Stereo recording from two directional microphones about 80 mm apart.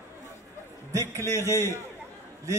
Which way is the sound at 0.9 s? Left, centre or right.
Right.